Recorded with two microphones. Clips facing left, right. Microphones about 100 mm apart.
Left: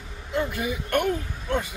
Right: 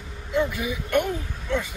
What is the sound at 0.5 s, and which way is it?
Speech, 50° left (ahead or behind).